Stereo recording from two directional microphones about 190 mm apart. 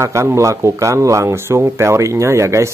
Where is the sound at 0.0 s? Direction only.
15° right (ahead or behind).